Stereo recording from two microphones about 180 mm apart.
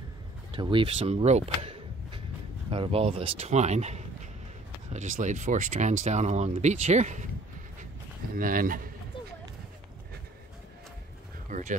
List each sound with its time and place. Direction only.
0.5 s speech: 30° right (ahead or behind)
8.4 s a man's voice: 50° right (ahead or behind)
11.5 s a man's voice: 45° right (ahead or behind)